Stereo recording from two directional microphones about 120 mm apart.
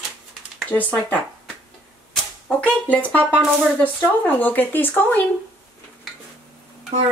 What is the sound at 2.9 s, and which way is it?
Speech, 15° left (ahead or behind).